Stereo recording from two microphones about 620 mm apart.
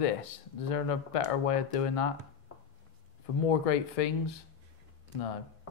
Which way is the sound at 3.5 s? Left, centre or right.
Left.